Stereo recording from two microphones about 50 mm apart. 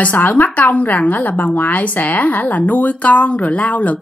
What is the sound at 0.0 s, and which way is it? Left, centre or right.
A woman's voice, left.